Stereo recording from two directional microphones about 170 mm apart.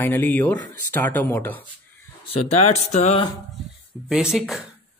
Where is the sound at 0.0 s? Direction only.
10° left (ahead or behind).